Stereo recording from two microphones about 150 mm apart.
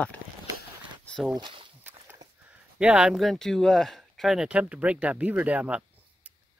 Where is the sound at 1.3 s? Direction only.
30° right (ahead or behind).